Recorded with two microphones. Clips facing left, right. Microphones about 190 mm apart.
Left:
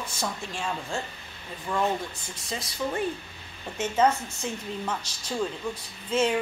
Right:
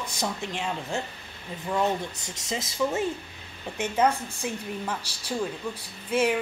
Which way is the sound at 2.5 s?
20° right (ahead or behind).